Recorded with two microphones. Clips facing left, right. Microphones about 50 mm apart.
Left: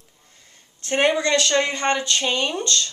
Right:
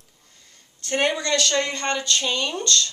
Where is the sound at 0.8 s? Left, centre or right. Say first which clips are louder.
Left 3 dB; left.